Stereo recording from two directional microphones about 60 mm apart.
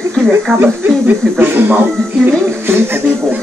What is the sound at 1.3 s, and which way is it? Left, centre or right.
Speech, right.